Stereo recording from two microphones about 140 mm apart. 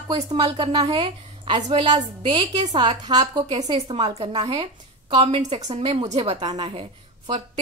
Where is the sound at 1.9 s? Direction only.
55° right (ahead or behind).